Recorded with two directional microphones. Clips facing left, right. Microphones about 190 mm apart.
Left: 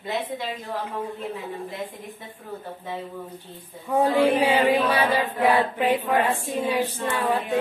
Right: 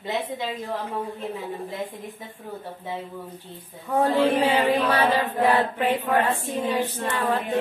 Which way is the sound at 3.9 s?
10° left (ahead or behind).